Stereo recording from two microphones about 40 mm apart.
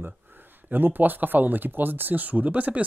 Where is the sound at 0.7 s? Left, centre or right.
Right.